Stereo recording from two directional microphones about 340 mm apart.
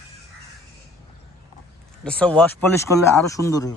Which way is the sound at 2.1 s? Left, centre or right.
Centre.